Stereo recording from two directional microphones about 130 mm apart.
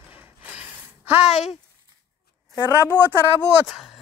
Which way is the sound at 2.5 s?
25° left (ahead or behind).